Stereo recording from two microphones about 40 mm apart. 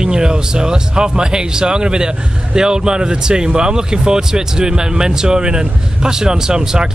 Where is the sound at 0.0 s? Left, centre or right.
Centre.